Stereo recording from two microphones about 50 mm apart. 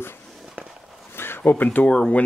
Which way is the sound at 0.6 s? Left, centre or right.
Right.